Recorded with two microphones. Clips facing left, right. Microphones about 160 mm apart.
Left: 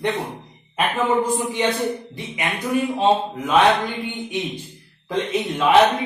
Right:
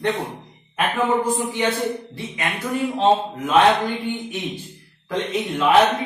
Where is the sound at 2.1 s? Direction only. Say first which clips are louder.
Even; 15° left (ahead or behind).